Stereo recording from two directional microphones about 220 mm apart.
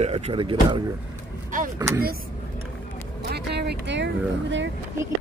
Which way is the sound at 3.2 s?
50° right (ahead or behind).